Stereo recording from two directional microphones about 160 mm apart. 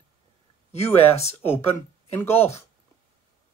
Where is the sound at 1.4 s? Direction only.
15° left (ahead or behind).